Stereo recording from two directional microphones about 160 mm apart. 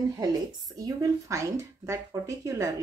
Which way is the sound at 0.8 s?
20° right (ahead or behind).